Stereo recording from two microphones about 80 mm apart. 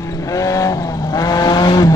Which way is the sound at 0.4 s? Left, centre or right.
Left.